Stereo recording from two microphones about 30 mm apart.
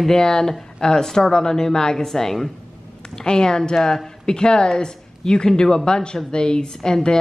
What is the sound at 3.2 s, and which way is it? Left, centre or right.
A woman's voice, left.